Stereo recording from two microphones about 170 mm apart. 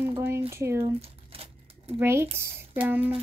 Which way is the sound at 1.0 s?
35° right (ahead or behind).